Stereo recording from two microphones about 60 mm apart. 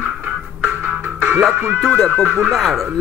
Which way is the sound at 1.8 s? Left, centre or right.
Centre.